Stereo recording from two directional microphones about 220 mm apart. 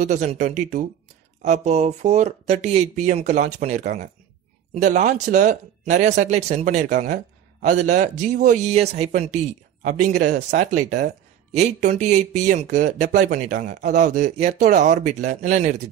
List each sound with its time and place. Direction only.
0.0 s a man's voice: 30° right (ahead or behind)